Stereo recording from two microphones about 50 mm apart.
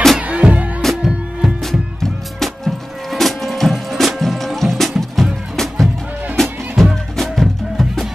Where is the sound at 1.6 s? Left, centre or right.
Centre.